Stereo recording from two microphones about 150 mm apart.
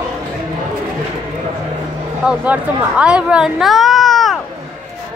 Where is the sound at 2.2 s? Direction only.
5° right (ahead or behind).